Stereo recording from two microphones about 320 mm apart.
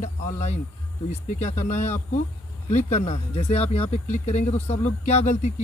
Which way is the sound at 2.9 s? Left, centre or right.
Centre.